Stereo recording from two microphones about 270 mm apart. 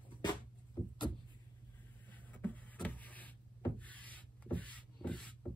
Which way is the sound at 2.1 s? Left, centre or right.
Centre.